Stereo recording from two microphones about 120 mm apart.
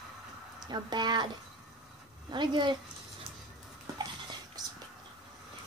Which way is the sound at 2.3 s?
40° right (ahead or behind).